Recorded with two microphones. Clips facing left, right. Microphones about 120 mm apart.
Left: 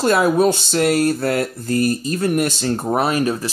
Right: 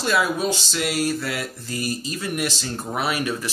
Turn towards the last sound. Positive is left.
turn(degrees=35)  # may be behind; listen again after turning